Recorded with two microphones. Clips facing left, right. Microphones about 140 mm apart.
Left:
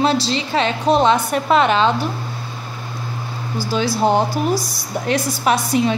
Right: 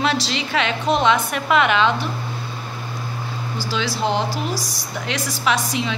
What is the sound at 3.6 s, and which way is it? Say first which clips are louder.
A woman's voice: left 5 dB; 50° left (ahead or behind).